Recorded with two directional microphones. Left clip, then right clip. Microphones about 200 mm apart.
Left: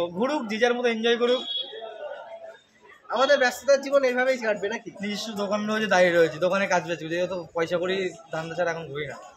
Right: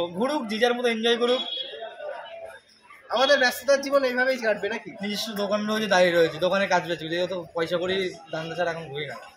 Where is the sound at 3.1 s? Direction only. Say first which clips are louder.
Even; 10° left (ahead or behind).